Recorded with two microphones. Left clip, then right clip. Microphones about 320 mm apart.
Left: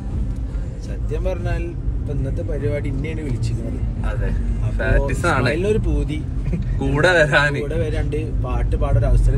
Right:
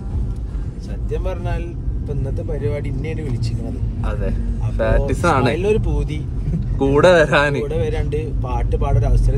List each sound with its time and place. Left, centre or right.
1.1 s speech: centre
2.6 s speech: centre
4.7 s speech: right
5.6 s speech: centre
6.9 s speech: right
7.6 s speech: centre